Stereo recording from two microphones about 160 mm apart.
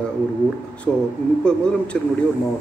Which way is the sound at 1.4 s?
5° left (ahead or behind).